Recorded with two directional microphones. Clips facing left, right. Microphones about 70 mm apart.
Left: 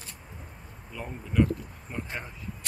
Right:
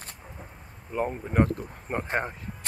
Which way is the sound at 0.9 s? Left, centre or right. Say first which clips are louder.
Right 2 dB; right.